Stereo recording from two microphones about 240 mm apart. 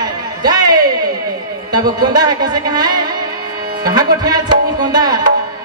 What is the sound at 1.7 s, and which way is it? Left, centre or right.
A man's voice, centre.